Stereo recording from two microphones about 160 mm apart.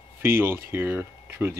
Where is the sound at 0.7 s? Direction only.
15° right (ahead or behind).